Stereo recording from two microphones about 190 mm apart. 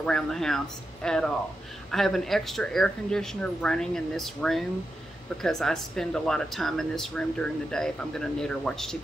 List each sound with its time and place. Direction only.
0.0 s speech: 5° left (ahead or behind)